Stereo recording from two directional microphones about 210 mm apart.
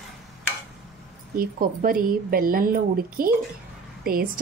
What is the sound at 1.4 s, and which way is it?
Speech, 40° right (ahead or behind).